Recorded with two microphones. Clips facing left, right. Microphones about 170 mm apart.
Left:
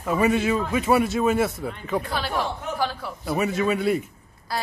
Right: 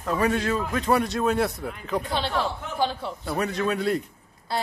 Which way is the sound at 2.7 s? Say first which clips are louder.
Right 2 dB; 20° right (ahead or behind).